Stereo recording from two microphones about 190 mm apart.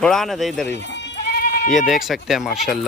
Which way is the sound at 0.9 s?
60° left (ahead or behind).